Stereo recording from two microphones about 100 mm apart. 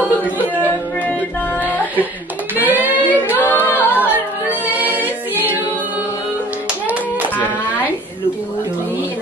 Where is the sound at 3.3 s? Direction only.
20° left (ahead or behind).